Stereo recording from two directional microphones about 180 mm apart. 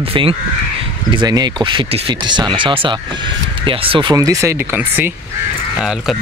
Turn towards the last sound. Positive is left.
turn(degrees=-10)  # may be behind; listen again after turning